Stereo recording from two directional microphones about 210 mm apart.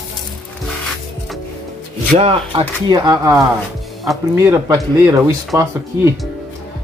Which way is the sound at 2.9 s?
15° right (ahead or behind).